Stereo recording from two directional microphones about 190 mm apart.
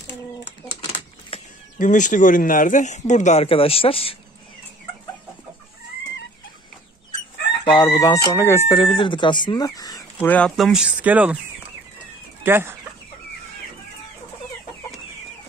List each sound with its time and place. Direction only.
0.7 s a sound: 30° left (ahead or behind)
1.8 s speech: 40° left (ahead or behind)
7.6 s speech: 20° left (ahead or behind)
8.7 s speech: 25° left (ahead or behind)
10.2 s speech: 5° left (ahead or behind)
12.4 s speech: 10° right (ahead or behind)